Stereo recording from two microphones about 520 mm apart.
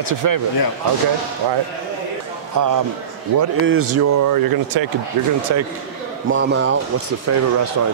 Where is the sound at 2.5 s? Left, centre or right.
Right.